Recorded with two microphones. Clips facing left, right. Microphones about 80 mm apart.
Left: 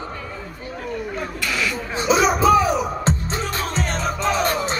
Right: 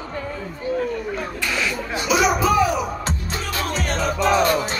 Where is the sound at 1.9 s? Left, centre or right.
Left.